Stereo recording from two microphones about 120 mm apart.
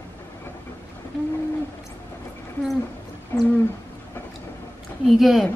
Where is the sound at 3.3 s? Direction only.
20° left (ahead or behind).